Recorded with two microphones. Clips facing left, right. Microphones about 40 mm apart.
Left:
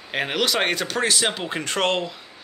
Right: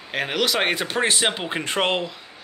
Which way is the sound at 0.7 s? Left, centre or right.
Right.